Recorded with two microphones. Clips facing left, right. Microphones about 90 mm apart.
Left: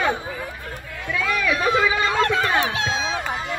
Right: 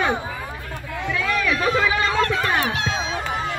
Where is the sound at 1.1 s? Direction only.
10° left (ahead or behind).